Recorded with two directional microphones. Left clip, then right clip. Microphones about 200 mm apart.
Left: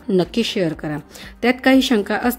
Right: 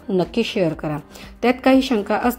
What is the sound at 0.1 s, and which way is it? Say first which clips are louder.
A woman's voice: left 1 dB; 15° left (ahead or behind).